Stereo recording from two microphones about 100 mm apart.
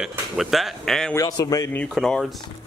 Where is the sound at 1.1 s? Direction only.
35° left (ahead or behind).